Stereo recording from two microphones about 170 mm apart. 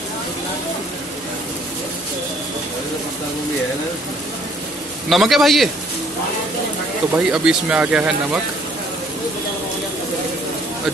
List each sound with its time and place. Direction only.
5.1 s speech: centre (ahead or behind)
7.2 s speech: 5° right (ahead or behind)